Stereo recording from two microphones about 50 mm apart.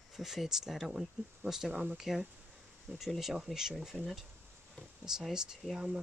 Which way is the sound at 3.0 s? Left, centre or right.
Centre.